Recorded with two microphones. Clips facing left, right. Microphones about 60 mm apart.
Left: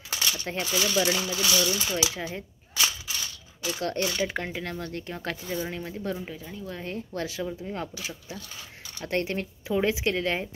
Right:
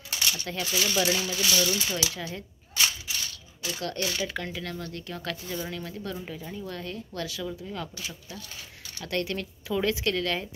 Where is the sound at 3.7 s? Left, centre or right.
Left.